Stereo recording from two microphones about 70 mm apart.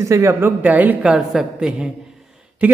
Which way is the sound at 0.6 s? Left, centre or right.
Right.